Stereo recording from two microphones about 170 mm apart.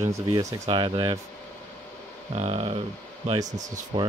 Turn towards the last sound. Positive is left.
turn(degrees=-20)  # may be behind; listen again after turning